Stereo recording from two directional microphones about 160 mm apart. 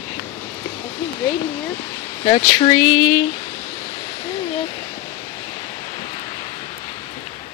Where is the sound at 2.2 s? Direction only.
35° left (ahead or behind).